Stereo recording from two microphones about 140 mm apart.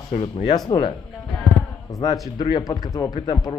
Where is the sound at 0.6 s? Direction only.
30° left (ahead or behind).